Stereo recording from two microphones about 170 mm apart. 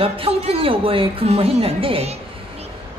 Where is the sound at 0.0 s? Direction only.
35° right (ahead or behind).